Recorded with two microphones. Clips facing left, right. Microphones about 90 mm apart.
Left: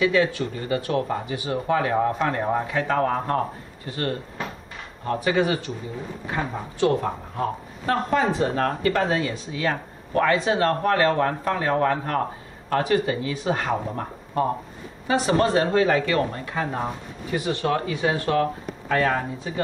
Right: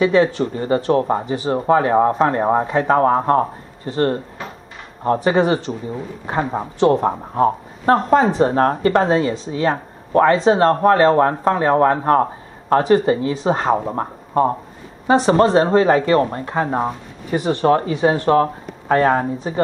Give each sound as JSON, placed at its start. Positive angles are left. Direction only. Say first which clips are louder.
{"t": 0.0, "sound": "speech", "louder": "right 6 dB", "side_deg": -35}